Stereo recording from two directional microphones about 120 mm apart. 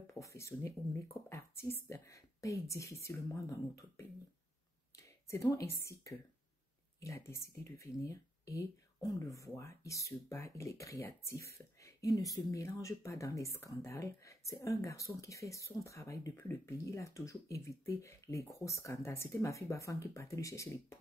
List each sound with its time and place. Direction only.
0.0 s speech: 25° left (ahead or behind)